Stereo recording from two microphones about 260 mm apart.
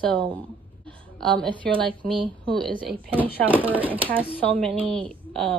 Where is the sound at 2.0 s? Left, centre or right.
Centre.